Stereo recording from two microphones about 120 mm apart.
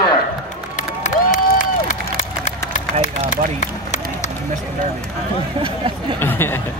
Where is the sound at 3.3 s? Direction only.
85° left.